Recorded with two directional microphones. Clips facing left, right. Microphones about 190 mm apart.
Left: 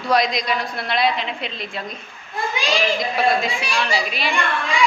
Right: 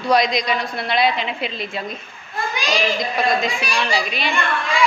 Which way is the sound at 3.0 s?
5° left (ahead or behind).